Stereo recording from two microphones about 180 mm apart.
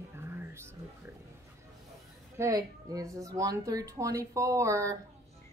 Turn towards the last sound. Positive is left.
turn(degrees=-15)  # may be behind; listen again after turning